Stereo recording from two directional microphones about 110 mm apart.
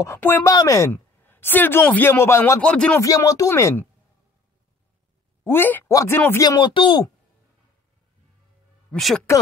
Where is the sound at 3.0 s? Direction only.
30° left (ahead or behind).